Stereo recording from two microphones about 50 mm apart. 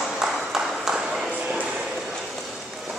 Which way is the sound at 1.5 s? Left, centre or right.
Centre.